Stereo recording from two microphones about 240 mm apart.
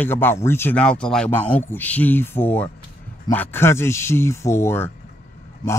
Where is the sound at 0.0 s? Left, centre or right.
Centre.